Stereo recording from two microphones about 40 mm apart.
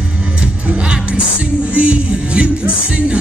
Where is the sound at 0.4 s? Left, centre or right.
Right.